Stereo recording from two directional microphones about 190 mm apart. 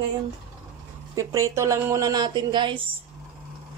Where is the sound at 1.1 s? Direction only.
15° right (ahead or behind).